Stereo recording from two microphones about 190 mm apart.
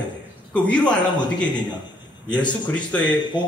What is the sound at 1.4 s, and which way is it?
Speech, 25° left (ahead or behind).